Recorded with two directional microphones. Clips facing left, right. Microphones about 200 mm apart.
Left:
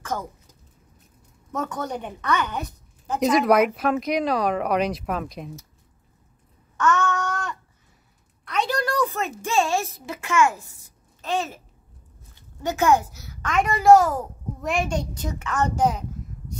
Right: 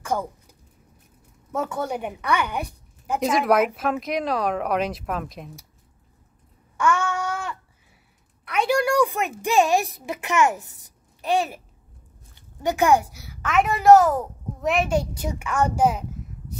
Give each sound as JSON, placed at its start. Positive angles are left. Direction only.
{"t": 1.5, "sound": "a woman's voice", "side_deg": -10}
{"t": 3.2, "sound": "speech", "side_deg": 0}
{"t": 6.8, "sound": "child singing", "side_deg": -10}
{"t": 8.5, "sound": "a sound", "side_deg": -10}
{"t": 9.4, "sound": "a child's voice", "side_deg": -15}
{"t": 12.6, "sound": "a child's voice", "side_deg": -15}